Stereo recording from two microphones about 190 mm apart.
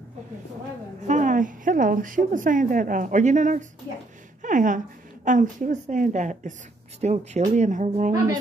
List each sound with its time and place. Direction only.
1.0 s a woman's voice: 40° right (ahead or behind)